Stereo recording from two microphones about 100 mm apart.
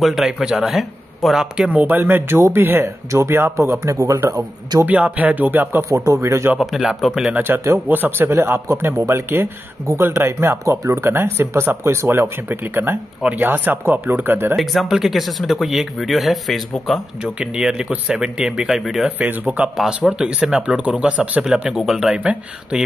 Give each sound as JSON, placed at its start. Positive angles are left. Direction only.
{"t": 0.0, "sound": "speech", "side_deg": 0}
{"t": 4.8, "sound": "speech", "side_deg": -15}
{"t": 5.9, "sound": "speech", "side_deg": -30}
{"t": 6.6, "sound": "speech", "side_deg": -5}
{"t": 7.3, "sound": "speech", "side_deg": -25}
{"t": 14.6, "sound": "speech", "side_deg": 0}
{"t": 17.2, "sound": "speech", "side_deg": -10}
{"t": 19.0, "sound": "speech", "side_deg": -15}